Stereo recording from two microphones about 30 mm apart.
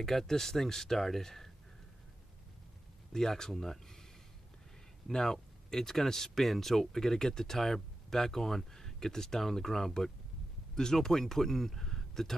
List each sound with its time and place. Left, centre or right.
0.0 s speech: centre
3.1 s speech: centre
5.1 s speech: centre